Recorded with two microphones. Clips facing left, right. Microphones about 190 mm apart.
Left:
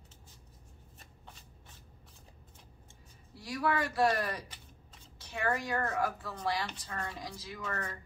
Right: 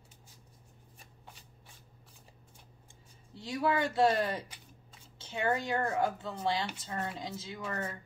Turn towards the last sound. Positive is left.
turn(degrees=-25)  # may be behind; listen again after turning